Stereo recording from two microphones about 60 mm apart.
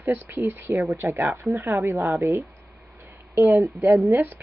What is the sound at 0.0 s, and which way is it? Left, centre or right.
A woman's voice, right.